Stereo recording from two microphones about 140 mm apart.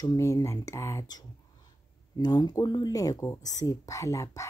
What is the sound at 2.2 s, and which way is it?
Speech, 30° left (ahead or behind).